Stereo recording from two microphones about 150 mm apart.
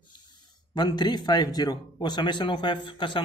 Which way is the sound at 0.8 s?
30° left (ahead or behind).